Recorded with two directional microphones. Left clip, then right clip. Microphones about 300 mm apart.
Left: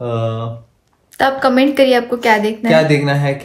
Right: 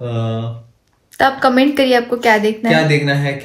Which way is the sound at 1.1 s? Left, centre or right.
Centre.